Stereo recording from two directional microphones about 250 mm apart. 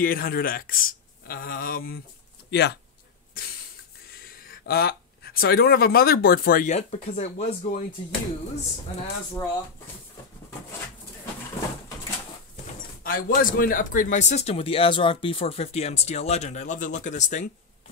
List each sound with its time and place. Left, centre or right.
0.0 s a man's voice: left
4.2 s speech: left
9.0 s speech: centre
13.0 s speech: left